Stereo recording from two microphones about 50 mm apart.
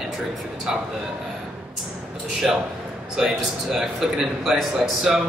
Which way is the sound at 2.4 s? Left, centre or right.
Centre.